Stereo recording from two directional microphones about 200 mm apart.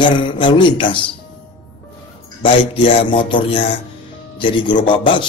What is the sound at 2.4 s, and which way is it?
A man's voice, 25° left (ahead or behind).